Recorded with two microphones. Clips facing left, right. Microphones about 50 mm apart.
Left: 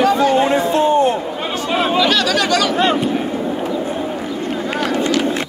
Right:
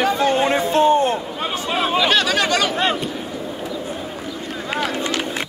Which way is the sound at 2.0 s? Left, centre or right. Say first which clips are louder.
Left 2 dB; right.